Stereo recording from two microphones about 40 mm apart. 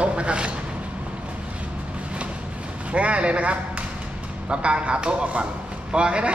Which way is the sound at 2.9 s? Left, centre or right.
Right.